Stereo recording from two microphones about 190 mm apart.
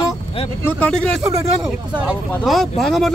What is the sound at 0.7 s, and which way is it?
Speech, 5° left (ahead or behind).